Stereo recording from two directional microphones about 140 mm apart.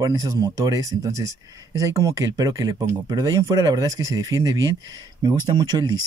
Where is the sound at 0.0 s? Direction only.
25° right (ahead or behind).